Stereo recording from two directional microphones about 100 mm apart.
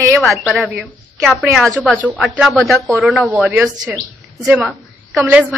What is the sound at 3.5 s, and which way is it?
Speech, 15° right (ahead or behind).